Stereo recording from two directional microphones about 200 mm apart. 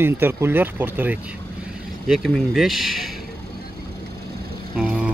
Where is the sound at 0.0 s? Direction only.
10° right (ahead or behind).